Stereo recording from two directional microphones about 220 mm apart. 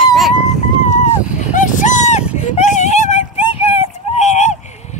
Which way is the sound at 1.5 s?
35° left (ahead or behind).